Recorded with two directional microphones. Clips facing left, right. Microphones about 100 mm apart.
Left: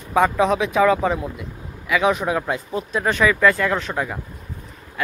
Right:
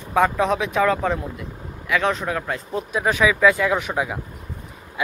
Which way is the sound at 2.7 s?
Centre (ahead or behind).